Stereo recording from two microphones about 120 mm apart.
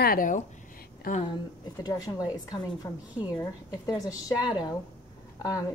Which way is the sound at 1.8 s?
30° left (ahead or behind).